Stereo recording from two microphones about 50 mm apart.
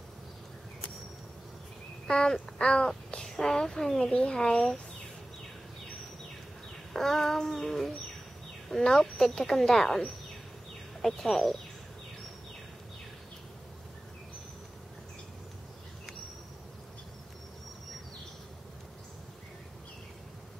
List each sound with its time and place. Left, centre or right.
2.0 s duck: centre
2.6 s a child's voice: centre
6.9 s a child's voice: centre